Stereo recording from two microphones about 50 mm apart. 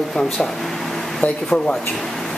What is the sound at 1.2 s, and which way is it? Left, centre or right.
Speech, left.